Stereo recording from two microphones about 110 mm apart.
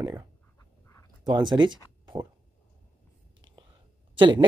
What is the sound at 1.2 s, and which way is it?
Speech, 40° right (ahead or behind).